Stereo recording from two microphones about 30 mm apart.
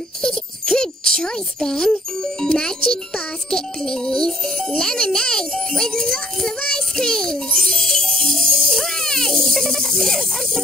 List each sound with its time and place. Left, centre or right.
0.2 s a child's voice: centre
3.4 s music: left